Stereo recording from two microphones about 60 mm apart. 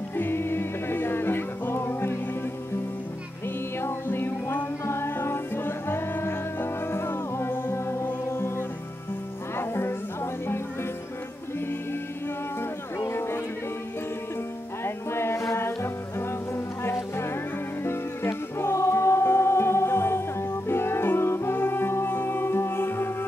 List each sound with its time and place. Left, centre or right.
0.1 s music: left
3.8 s music: left
13.0 s a sound: left
15.0 s music: left